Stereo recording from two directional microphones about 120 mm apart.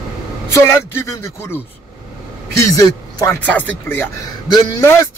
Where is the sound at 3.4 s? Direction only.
10° left (ahead or behind).